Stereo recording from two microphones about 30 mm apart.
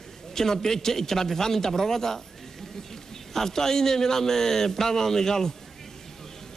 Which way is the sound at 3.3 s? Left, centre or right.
Centre.